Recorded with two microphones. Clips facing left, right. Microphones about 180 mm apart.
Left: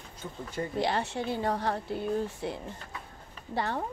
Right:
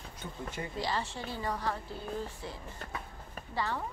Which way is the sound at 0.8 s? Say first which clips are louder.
Left 5 dB; 60° left (ahead or behind).